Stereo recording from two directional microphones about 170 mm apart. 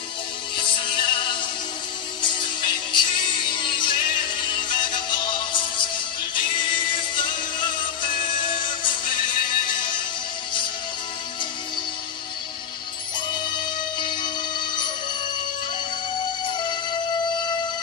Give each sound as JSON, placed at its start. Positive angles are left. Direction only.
{"t": 0.6, "sound": "music", "side_deg": 30}
{"t": 13.3, "sound": "music", "side_deg": 25}